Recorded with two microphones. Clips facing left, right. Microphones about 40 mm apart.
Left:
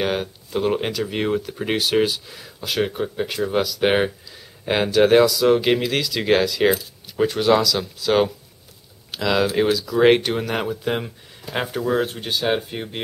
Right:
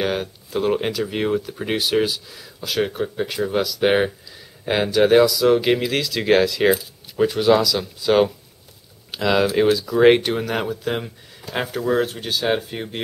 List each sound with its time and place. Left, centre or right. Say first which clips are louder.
0.0 s speech: even; centre
9.1 s speech: right 1 dB; centre